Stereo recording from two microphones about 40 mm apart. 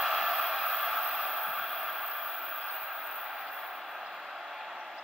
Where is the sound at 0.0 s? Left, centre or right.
Centre.